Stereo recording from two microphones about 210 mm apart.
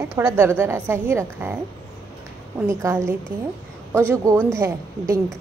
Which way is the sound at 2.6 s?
15° right (ahead or behind).